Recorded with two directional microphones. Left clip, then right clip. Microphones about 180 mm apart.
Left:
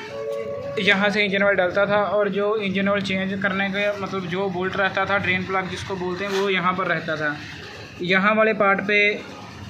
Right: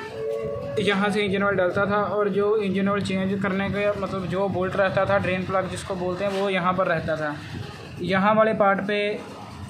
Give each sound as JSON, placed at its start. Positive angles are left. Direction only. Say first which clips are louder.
{"t": 0.7, "sound": "a man's voice", "louder": "left 4 dB", "side_deg": -5}
{"t": 6.4, "sound": "a man's voice", "louder": "left 1 dB", "side_deg": -30}